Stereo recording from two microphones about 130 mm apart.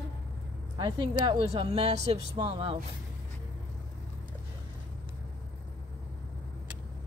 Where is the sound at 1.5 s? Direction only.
50° right (ahead or behind).